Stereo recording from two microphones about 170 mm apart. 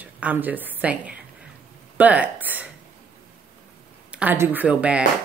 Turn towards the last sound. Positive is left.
turn(degrees=-5)  # may be behind; listen again after turning